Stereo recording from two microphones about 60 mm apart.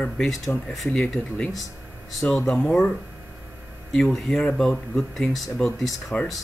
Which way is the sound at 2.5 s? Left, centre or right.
Centre.